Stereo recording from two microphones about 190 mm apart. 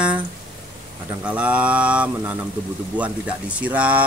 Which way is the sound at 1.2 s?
5° right (ahead or behind).